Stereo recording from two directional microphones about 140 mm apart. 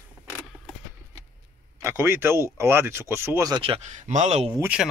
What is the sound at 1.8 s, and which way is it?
Speech, 20° right (ahead or behind).